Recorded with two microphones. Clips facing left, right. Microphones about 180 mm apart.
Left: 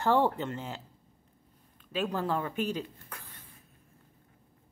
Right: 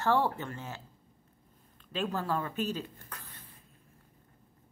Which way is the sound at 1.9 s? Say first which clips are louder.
Left 2 dB; 10° left (ahead or behind).